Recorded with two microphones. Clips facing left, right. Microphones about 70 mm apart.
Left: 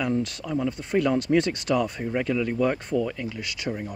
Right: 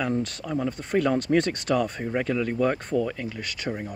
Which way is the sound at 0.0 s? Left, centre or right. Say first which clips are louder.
Left 1 dB; right.